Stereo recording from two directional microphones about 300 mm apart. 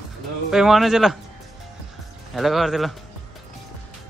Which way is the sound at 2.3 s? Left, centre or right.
Centre.